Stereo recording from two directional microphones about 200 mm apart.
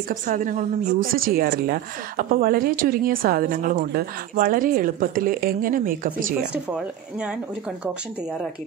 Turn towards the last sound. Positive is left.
turn(degrees=-5)  # may be behind; listen again after turning